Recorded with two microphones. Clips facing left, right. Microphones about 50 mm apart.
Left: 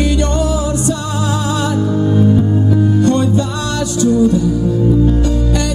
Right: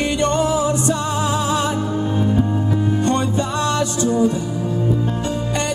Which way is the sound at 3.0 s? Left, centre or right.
Right.